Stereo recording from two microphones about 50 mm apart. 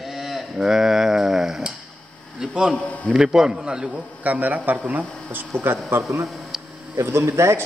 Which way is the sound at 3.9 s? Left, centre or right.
Right.